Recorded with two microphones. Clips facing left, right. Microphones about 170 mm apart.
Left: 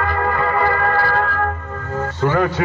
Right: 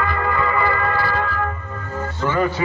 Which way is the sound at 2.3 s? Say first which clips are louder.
Left 2 dB; 75° left (ahead or behind).